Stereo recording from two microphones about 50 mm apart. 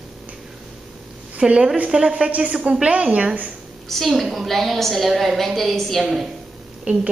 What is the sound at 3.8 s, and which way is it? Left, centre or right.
A woman's voice, centre.